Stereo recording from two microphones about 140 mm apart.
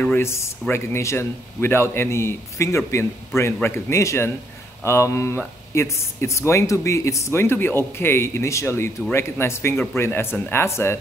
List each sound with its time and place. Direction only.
0.0 s a man's voice: 15° left (ahead or behind)